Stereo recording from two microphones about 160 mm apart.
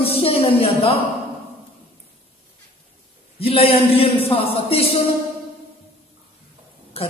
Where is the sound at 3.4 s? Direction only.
35° left (ahead or behind).